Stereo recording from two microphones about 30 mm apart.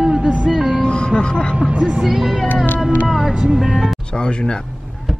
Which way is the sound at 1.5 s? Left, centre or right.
Right.